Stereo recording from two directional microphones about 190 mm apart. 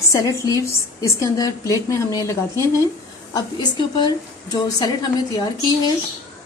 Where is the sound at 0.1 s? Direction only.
15° left (ahead or behind).